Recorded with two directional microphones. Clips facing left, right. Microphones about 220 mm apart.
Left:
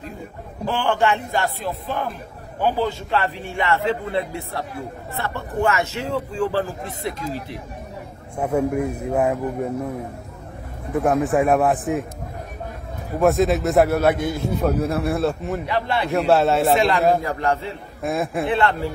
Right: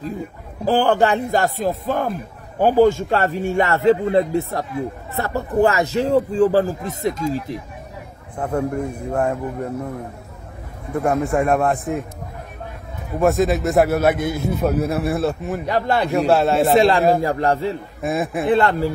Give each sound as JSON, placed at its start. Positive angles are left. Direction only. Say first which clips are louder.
{"t": 0.7, "sound": "a man's voice", "louder": "right 4 dB", "side_deg": -35}
{"t": 8.4, "sound": "a man's voice", "louder": "left 1 dB", "side_deg": 5}
{"t": 10.9, "sound": "a man's voice", "louder": "even", "side_deg": 0}
{"t": 13.2, "sound": "a man's voice", "louder": "even", "side_deg": 0}
{"t": 15.6, "sound": "a man's voice", "louder": "right 5 dB", "side_deg": -40}
{"t": 16.1, "sound": "a man's voice", "louder": "left 1 dB", "side_deg": 0}
{"t": 16.7, "sound": "a man's voice", "louder": "right 3 dB", "side_deg": -35}
{"t": 18.0, "sound": "a man's voice", "louder": "right 1 dB", "side_deg": -5}
{"t": 18.5, "sound": "a man's voice", "louder": "right 6 dB", "side_deg": -40}